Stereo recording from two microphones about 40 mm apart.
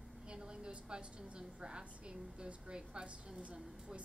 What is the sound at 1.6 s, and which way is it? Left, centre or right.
A woman's voice, right.